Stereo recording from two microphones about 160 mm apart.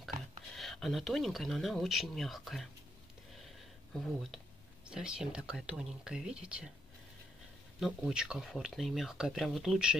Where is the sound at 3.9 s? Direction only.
Centre (ahead or behind).